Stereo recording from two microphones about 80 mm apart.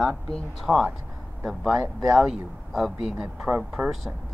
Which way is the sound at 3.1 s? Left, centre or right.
Centre.